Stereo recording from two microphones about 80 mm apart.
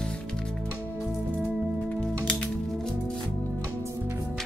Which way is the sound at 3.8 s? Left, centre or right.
Right.